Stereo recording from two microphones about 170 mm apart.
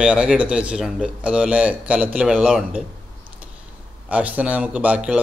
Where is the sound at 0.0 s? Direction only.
5° right (ahead or behind).